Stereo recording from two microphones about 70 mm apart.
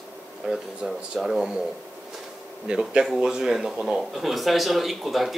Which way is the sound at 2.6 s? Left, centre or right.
Centre.